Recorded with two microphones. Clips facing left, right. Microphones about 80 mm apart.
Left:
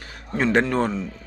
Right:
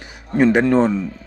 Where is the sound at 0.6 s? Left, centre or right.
Right.